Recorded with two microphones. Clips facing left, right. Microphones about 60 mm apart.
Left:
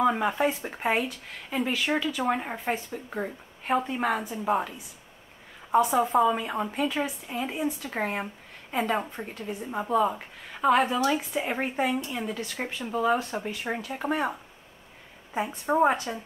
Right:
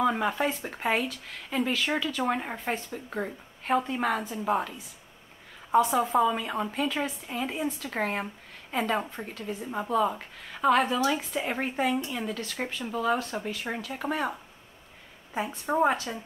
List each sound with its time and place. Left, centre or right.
0.0 s a woman's voice: centre
5.9 s a woman's voice: centre
9.3 s a woman's voice: centre
9.7 s a woman's voice: centre
15.6 s a woman's voice: centre